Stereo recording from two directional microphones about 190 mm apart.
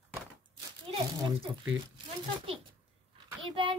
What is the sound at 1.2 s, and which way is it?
Speech, 25° right (ahead or behind).